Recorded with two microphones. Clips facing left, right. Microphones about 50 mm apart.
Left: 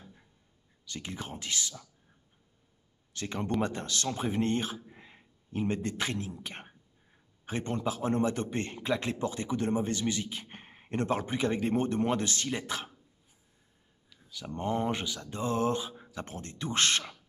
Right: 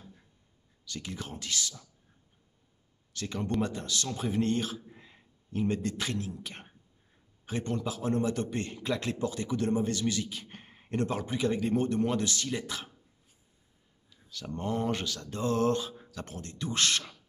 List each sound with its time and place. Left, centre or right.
0.8 s a man's voice: left
3.1 s a man's voice: left
8.8 s a man's voice: left
14.3 s a man's voice: centre